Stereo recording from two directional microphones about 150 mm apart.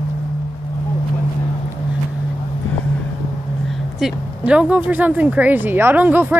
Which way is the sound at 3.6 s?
5° right (ahead or behind).